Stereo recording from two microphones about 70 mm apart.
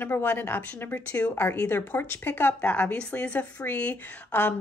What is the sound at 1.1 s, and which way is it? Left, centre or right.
Speech, left.